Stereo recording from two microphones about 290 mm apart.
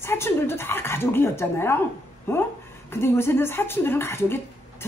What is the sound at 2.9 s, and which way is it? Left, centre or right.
A woman's voice, centre.